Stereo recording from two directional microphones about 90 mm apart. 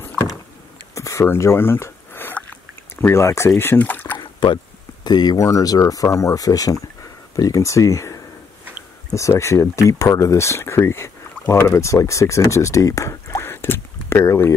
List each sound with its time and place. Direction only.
0.9 s a sound: 35° left (ahead or behind)
3.0 s speech: 30° left (ahead or behind)
4.2 s boat: 65° left (ahead or behind)
5.0 s speech: 50° left (ahead or behind)
9.3 s speech: 30° left (ahead or behind)